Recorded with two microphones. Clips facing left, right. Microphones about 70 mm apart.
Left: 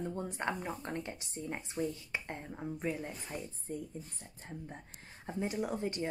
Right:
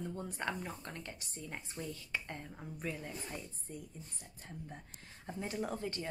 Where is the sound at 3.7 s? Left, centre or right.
Left.